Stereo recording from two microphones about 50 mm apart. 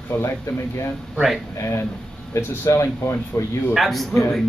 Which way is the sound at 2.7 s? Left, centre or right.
Left.